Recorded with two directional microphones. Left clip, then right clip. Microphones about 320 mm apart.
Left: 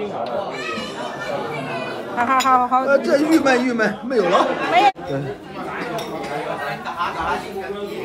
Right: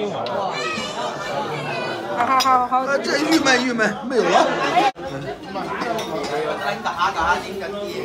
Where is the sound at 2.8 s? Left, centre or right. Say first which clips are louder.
Left 3 dB; centre.